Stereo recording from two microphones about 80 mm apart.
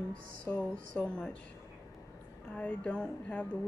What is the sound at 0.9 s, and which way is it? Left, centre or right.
Speech, centre.